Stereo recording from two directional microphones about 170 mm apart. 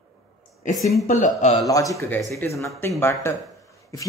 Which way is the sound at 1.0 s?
45° left (ahead or behind).